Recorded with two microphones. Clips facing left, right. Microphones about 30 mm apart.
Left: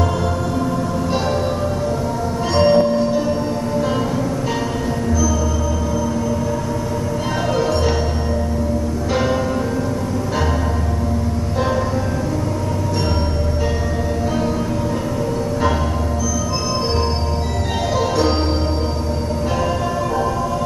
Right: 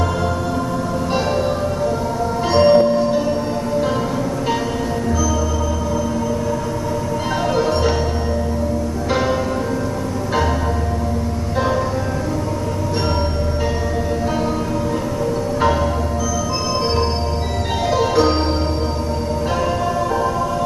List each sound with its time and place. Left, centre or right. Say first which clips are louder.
2.5 s music: right 2 dB; centre
7.5 s music: right 1 dB; centre
17.9 s music: right 2 dB; centre